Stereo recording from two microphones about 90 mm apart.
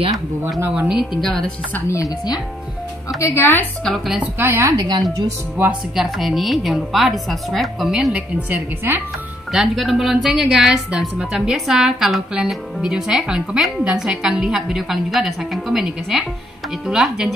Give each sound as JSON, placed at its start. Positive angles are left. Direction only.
{"t": 0.7, "sound": "a woman's voice", "side_deg": -5}
{"t": 1.9, "sound": "speech", "side_deg": 35}
{"t": 3.2, "sound": "speech", "side_deg": 30}
{"t": 3.8, "sound": "a woman's voice", "side_deg": 0}
{"t": 4.4, "sound": "a woman's voice", "side_deg": -30}
{"t": 5.6, "sound": "speech", "side_deg": -10}
{"t": 6.0, "sound": "a woman's voice", "side_deg": 0}
{"t": 8.1, "sound": "a woman's voice", "side_deg": -20}
{"t": 9.5, "sound": "a woman's voice", "side_deg": 0}